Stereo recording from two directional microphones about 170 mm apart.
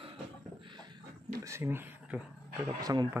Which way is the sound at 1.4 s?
15° right (ahead or behind).